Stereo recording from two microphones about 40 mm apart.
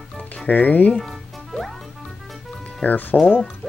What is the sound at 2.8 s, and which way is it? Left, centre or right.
Speech, left.